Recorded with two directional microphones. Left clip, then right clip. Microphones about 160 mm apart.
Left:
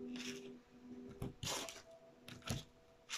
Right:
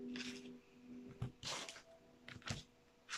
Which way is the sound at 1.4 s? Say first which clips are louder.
Left 2 dB; 15° left (ahead or behind).